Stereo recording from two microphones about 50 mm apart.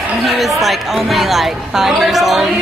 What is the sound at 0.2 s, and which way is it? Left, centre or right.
Speech, centre.